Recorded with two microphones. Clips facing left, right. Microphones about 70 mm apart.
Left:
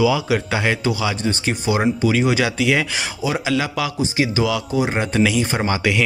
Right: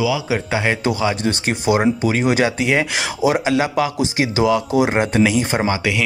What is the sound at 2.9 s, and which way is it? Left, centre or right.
Speech, right.